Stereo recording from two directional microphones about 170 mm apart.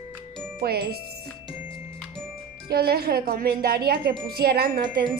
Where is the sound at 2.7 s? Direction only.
65° right (ahead or behind).